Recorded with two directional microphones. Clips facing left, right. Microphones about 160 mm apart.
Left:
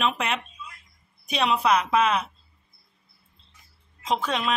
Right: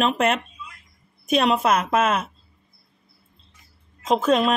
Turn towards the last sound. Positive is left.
turn(degrees=-45)  # may be behind; listen again after turning